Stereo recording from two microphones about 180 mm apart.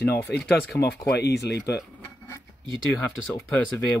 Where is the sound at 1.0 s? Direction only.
65° left (ahead or behind).